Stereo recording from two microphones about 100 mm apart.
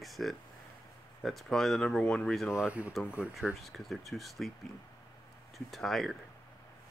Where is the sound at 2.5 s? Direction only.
25° left (ahead or behind).